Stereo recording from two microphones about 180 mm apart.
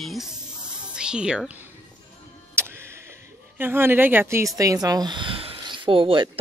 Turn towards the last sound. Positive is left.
turn(degrees=-30)  # may be behind; listen again after turning